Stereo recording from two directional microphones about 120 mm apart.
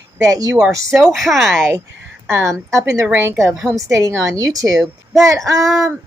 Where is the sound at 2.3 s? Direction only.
20° right (ahead or behind).